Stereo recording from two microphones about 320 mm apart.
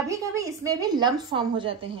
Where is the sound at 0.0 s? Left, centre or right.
Centre.